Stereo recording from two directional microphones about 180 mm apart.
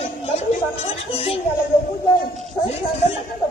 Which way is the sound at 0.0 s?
40° left (ahead or behind).